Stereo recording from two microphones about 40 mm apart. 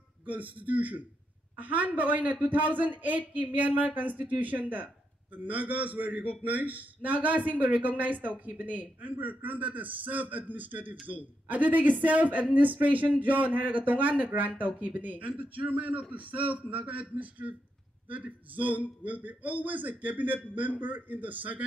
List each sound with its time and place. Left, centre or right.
0.2 s a man's voice: right